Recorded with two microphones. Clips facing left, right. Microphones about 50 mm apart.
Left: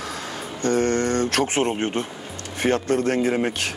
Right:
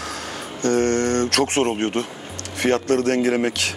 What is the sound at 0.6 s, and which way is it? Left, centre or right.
Speech, right.